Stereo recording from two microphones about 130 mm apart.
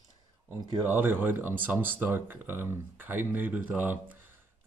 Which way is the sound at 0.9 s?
15° right (ahead or behind).